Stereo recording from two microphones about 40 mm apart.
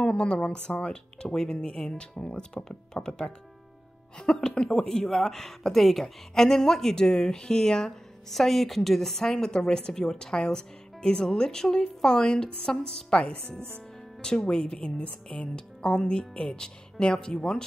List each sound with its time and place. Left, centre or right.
0.0 s speech: left
13.6 s speech: right
14.2 s speech: centre